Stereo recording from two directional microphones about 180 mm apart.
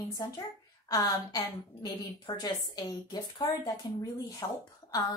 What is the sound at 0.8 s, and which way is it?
A woman's voice, 20° left (ahead or behind).